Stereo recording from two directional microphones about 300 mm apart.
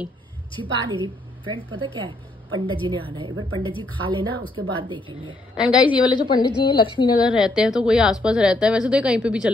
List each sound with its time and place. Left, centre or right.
0.6 s a woman's voice: centre
5.6 s speech: centre
6.0 s a woman's voice: centre
7.2 s speech: centre